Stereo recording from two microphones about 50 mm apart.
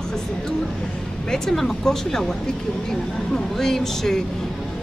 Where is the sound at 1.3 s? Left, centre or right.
Centre.